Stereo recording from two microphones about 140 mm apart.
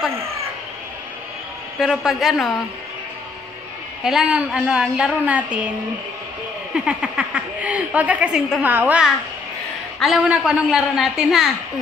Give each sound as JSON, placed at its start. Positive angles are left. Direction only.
{"t": 1.8, "sound": "a woman's voice", "side_deg": -5}
{"t": 4.0, "sound": "a woman's voice", "side_deg": -5}
{"t": 6.7, "sound": "a woman's voice", "side_deg": -5}